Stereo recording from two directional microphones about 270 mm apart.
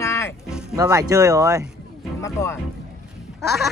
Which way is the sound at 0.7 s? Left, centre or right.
Centre.